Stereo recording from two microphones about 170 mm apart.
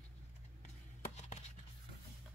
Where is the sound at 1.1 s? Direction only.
45° left (ahead or behind).